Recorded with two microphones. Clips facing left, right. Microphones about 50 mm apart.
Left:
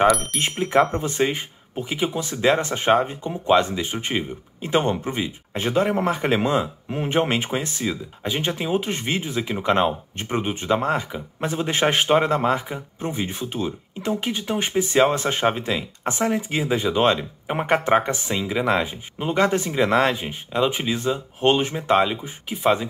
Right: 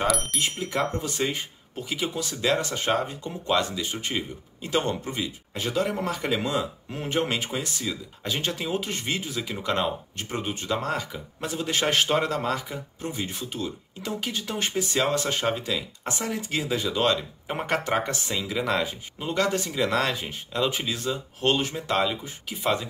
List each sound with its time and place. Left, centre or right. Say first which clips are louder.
0.0 s speech: left 8 dB; centre
0.6 s speech: left 7 dB; left
0.9 s speech: left 5 dB; left
8.2 s speech: left 4 dB; left